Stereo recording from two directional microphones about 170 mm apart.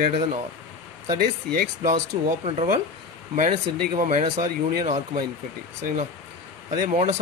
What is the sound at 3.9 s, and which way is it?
Speech, 50° right (ahead or behind).